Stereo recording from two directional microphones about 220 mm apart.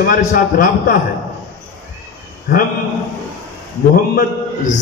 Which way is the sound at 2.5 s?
35° left (ahead or behind).